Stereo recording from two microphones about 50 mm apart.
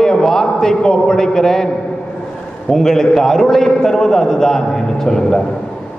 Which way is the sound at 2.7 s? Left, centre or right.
Centre.